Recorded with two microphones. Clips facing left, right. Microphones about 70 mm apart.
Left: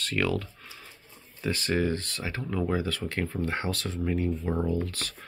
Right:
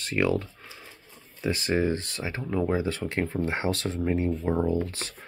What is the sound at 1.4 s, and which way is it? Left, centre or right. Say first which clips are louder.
Speech: right 2 dB; centre.